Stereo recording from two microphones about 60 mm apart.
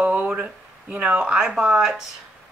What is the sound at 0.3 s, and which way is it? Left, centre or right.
Speech, centre.